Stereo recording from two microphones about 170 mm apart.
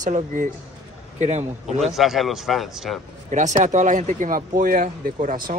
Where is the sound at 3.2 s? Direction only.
45° right (ahead or behind).